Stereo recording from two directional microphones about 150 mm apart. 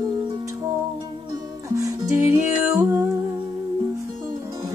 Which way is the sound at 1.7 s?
20° right (ahead or behind).